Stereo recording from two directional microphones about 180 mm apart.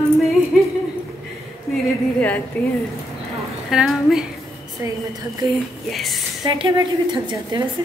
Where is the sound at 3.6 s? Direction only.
Centre (ahead or behind).